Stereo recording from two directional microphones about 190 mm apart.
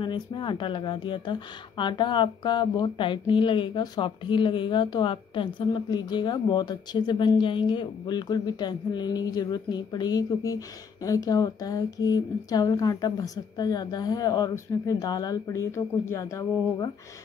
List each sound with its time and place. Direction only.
0.0 s speech: 25° left (ahead or behind)